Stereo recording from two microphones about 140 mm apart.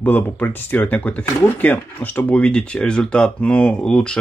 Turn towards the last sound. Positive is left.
turn(degrees=5)  # may be behind; listen again after turning